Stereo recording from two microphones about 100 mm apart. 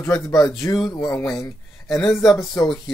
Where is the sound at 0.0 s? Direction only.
35° left (ahead or behind).